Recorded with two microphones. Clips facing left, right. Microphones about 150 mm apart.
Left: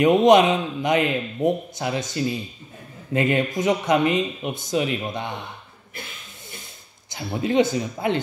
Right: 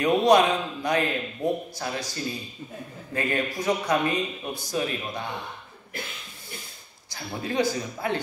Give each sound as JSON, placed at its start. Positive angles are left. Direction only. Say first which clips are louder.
{"t": 0.0, "sound": "a man's voice", "louder": "left 4 dB", "side_deg": 20}
{"t": 7.1, "sound": "a man's voice", "louder": "left 7 dB", "side_deg": 20}